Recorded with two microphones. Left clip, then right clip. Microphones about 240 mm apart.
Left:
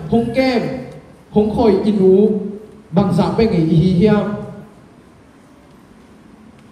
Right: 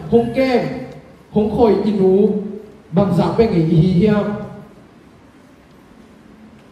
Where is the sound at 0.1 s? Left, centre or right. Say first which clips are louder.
Right 1 dB; left.